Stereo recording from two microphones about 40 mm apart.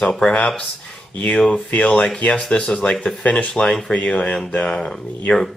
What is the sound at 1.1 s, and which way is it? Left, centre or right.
Speech, left.